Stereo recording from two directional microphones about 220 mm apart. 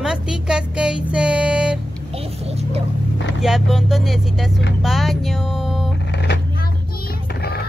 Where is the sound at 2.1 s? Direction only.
25° right (ahead or behind).